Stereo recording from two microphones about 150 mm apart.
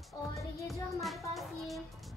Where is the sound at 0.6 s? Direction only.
Centre (ahead or behind).